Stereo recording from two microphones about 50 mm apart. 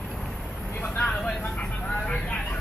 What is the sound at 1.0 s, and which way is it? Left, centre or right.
Speech, left.